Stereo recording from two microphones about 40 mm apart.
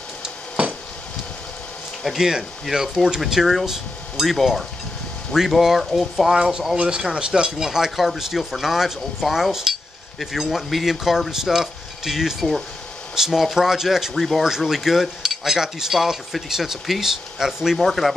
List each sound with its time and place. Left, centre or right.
0.6 s dishes: right
2.1 s stir: centre
5.3 s speech: centre
6.2 s stir: centre
13.3 s speech: centre
14.6 s stir: centre
17.7 s speech: centre